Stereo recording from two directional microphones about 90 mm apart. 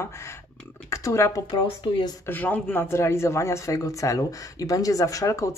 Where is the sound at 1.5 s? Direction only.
55° left (ahead or behind).